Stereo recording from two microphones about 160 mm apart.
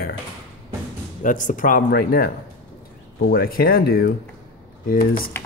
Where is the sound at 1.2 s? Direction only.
55° left (ahead or behind).